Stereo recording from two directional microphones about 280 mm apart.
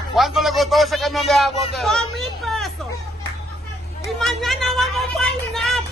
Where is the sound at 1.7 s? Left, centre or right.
Centre.